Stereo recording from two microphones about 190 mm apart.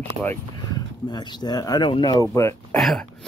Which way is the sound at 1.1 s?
25° left (ahead or behind).